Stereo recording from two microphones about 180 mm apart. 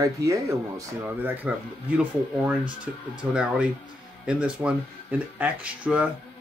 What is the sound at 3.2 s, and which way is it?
Speech, 5° right (ahead or behind).